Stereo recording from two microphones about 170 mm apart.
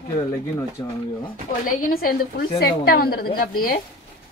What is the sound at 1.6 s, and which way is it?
A woman's voice, 55° left (ahead or behind).